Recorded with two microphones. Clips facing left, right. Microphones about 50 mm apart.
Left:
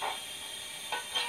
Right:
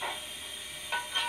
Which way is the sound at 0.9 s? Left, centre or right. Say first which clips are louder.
Right 3 dB; centre.